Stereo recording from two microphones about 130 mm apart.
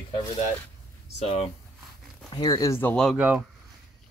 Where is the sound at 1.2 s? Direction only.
50° left (ahead or behind).